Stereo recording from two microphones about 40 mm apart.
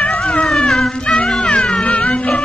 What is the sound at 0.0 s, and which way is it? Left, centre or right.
Cat, left.